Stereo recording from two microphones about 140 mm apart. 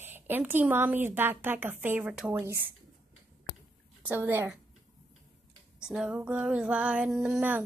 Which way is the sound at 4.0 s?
15° right (ahead or behind).